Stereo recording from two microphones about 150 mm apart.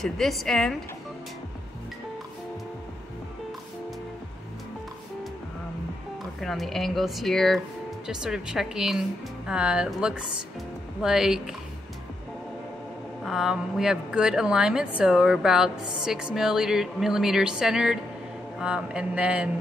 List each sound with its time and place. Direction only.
0.0 s a woman's voice: centre (ahead or behind)
6.4 s a woman's voice: centre (ahead or behind)
13.2 s a woman's voice: 5° right (ahead or behind)
18.6 s mantra: 5° right (ahead or behind)